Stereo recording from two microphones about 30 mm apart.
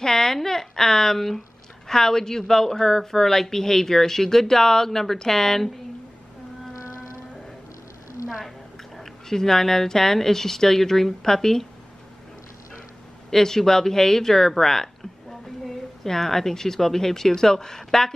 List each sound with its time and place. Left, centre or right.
0.0 s a woman's voice: centre
9.0 s speech: centre
13.3 s a woman's voice: centre